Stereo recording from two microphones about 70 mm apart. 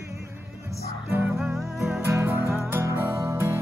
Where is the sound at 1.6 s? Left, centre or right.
Centre.